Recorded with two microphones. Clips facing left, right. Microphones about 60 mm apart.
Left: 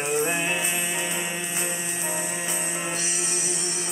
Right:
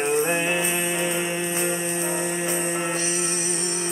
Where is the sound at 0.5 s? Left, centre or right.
Right.